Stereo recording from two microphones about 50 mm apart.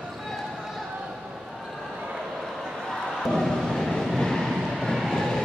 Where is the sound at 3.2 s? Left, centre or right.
Centre.